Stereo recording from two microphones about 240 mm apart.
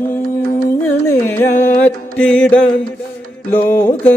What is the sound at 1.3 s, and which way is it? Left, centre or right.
Music, centre.